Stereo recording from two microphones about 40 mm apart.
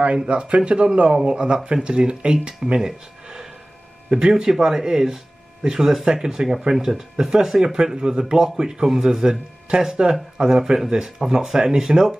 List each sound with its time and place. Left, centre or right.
0.3 s speech: right; by 3.4 s centre
4.5 s speech: centre